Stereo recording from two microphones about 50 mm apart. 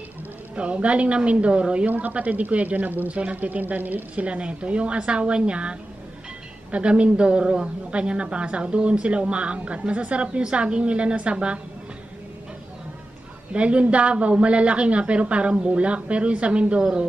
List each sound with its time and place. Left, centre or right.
0.6 s a woman's voice: right
13.5 s a woman's voice: right